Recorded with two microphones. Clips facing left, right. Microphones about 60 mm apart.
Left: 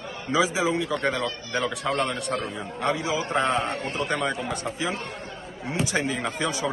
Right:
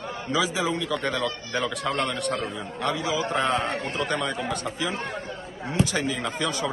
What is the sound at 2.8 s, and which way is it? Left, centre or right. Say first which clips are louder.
A man's voice: even; left.